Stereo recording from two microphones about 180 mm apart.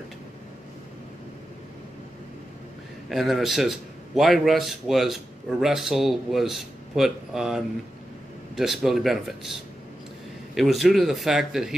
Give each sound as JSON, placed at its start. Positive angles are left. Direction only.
{"t": 3.1, "sound": "a man's voice", "side_deg": 0}